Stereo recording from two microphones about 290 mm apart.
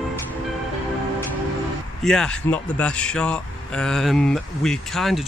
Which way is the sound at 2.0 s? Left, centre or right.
Centre.